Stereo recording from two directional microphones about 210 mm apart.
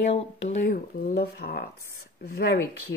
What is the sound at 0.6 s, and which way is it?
Speech, 40° left (ahead or behind).